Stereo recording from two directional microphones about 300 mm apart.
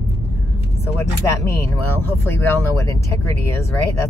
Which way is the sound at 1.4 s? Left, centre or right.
Centre.